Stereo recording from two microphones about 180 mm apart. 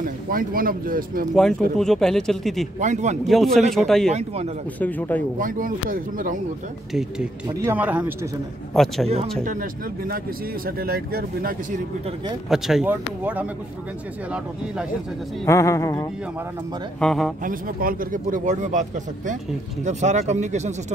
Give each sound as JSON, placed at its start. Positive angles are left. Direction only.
{"t": 0.0, "sound": "speech", "side_deg": -50}
{"t": 1.8, "sound": "speech", "side_deg": 5}
{"t": 2.8, "sound": "speech", "side_deg": -40}
{"t": 3.3, "sound": "speech", "side_deg": 0}
{"t": 4.1, "sound": "speech", "side_deg": -35}
{"t": 4.7, "sound": "speech", "side_deg": 10}
{"t": 5.4, "sound": "speech", "side_deg": -50}
{"t": 6.9, "sound": "speech", "side_deg": 0}
{"t": 8.7, "sound": "speech", "side_deg": 0}
{"t": 9.4, "sound": "speech", "side_deg": -50}
{"t": 12.4, "sound": "speech", "side_deg": 0}
{"t": 15.4, "sound": "speech", "side_deg": 15}
{"t": 17.0, "sound": "speech", "side_deg": 0}
{"t": 17.4, "sound": "speech", "side_deg": -50}